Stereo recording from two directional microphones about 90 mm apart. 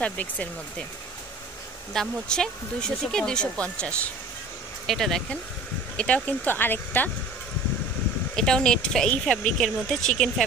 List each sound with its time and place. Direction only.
0.0 s speech: 15° left (ahead or behind)
2.0 s speech: 5° left (ahead or behind)
5.9 s speech: 15° left (ahead or behind)
8.4 s speech: 5° left (ahead or behind)